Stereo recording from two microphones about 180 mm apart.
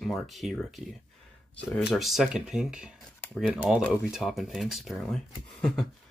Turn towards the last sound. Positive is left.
turn(degrees=5)  # may be behind; listen again after turning